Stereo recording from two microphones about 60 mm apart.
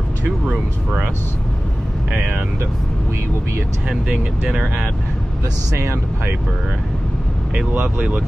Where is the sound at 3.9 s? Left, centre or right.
Centre.